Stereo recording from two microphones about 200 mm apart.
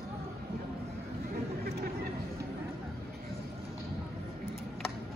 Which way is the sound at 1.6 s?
50° right (ahead or behind).